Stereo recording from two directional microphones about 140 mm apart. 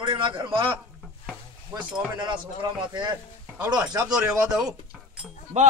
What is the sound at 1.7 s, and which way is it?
Speech, 35° right (ahead or behind).